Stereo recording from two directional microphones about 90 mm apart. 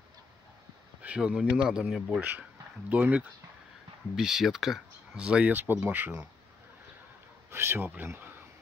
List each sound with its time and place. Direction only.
1.0 s speech: 10° right (ahead or behind)
4.2 s speech: 5° right (ahead or behind)
7.5 s speech: 25° right (ahead or behind)